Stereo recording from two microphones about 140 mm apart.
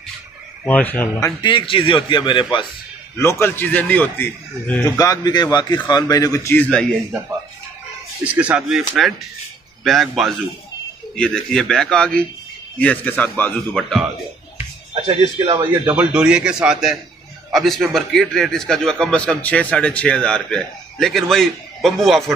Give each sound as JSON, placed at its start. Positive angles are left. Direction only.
{"t": 0.7, "sound": "speech", "side_deg": 10}
{"t": 1.4, "sound": "a man's voice", "side_deg": 35}
{"t": 3.2, "sound": "speech", "side_deg": 20}
{"t": 4.8, "sound": "a man's voice", "side_deg": 25}
{"t": 8.2, "sound": "a man's voice", "side_deg": -10}
{"t": 15.0, "sound": "a man's voice", "side_deg": -35}
{"t": 15.9, "sound": "a man's voice", "side_deg": -10}